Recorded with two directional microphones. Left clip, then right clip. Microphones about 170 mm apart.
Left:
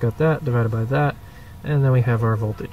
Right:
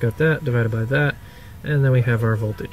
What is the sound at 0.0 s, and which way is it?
Speech, centre (ahead or behind).